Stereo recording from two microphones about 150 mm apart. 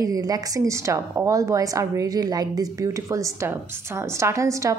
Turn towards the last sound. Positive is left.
turn(degrees=-20)  # may be behind; listen again after turning